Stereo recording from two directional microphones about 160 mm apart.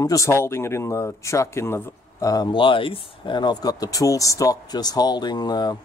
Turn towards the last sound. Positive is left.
turn(degrees=25)  # may be behind; listen again after turning